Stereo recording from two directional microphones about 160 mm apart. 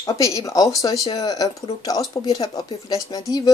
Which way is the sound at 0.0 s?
20° left (ahead or behind).